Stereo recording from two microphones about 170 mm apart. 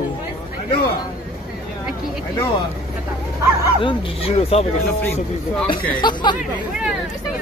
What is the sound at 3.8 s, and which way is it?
Speech, 35° left (ahead or behind).